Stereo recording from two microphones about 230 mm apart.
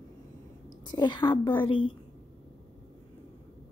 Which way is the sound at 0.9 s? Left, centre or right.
Centre.